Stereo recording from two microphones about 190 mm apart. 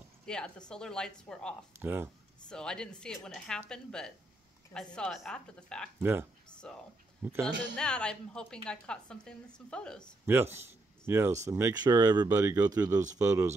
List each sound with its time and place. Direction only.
0.2 s a woman's voice: 5° left (ahead or behind)
1.8 s speech: 10° right (ahead or behind)
2.5 s a woman's voice: 5° left (ahead or behind)
7.2 s a man's voice: 10° right (ahead or behind)
7.7 s a woman's voice: 5° left (ahead or behind)
10.2 s speech: 10° right (ahead or behind)
10.6 s a sound: 15° right (ahead or behind)
11.4 s speech: 15° right (ahead or behind)